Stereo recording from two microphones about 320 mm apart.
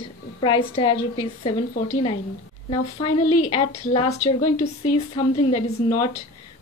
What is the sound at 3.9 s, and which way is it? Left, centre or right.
A woman's voice, centre.